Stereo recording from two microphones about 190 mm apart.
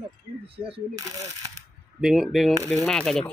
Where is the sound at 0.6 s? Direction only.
30° right (ahead or behind).